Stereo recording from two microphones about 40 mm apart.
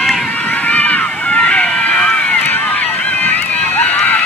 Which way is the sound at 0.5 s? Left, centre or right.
Left.